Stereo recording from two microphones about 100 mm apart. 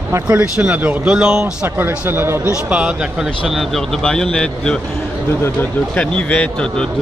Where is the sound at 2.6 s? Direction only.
10° right (ahead or behind).